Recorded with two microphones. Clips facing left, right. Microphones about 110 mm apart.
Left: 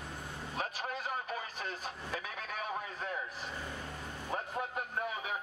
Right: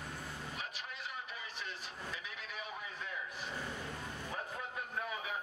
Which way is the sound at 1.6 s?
45° left (ahead or behind).